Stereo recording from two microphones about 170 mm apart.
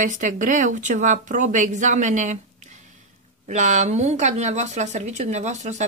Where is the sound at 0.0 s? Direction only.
50° right (ahead or behind).